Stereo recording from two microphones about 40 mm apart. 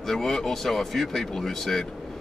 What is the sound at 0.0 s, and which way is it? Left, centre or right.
A man's voice, centre.